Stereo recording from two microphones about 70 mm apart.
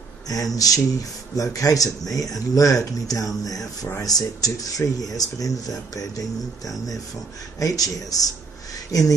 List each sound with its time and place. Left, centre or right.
0.3 s speech: left
7.5 s speech: left